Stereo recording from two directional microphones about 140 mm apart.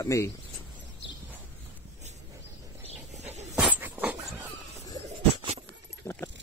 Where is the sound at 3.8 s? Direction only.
15° right (ahead or behind).